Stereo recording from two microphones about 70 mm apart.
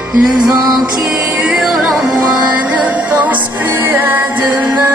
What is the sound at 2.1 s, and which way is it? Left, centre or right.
Music, right.